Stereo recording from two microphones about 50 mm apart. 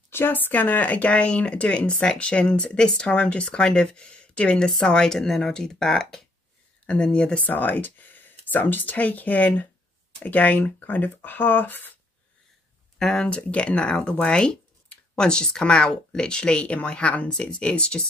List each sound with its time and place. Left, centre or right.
0.1 s speech: left; by 6.2 s centre
6.9 s speech: left
13.0 s speech: centre